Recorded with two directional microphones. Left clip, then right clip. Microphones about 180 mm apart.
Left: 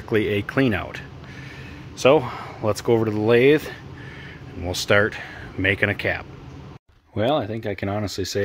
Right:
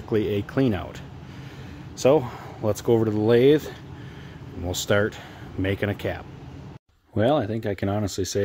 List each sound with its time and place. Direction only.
0.1 s speech: 10° right (ahead or behind)
7.2 s speech: 30° right (ahead or behind)